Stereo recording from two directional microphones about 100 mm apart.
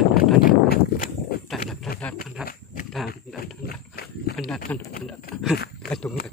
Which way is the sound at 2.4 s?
10° right (ahead or behind).